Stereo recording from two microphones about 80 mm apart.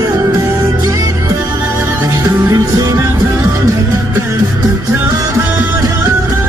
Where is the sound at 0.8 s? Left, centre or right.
Right.